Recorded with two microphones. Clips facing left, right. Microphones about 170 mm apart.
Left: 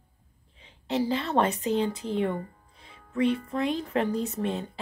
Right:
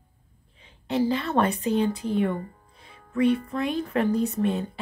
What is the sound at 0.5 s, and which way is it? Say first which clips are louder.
A woman's voice: right 2 dB; 25° left (ahead or behind).